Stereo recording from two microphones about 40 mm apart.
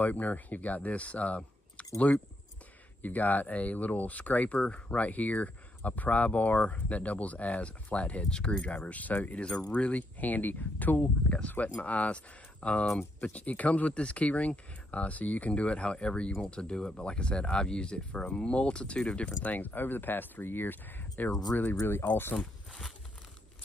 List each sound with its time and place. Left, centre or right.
0.0 s speech: left
3.0 s speech: left
9.4 s speech: left
19.5 s speech: left
22.0 s speech: left